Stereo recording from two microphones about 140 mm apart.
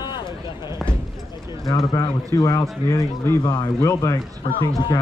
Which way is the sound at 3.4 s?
30° left (ahead or behind).